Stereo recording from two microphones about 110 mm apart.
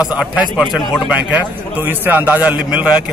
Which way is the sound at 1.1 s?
15° right (ahead or behind).